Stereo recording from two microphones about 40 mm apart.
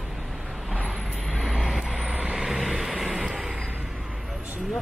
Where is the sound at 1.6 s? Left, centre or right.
Centre.